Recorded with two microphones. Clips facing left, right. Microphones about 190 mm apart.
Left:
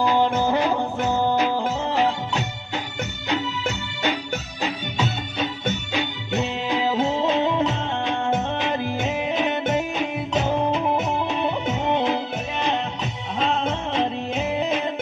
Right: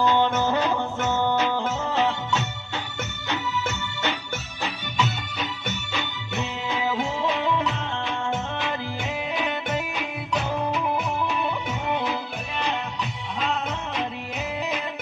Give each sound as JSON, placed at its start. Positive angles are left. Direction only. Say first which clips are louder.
{"t": 0.0, "sound": "music", "louder": "left 2 dB", "side_deg": 10}